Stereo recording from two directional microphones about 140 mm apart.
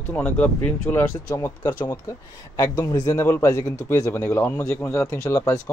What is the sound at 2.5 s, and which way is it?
A man's voice, 25° left (ahead or behind).